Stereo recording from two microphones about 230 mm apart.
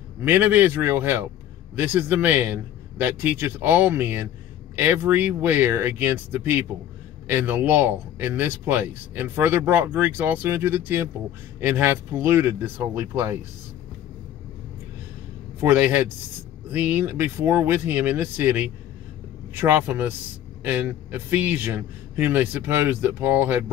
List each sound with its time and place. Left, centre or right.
0.2 s speech: centre
15.6 s speech: centre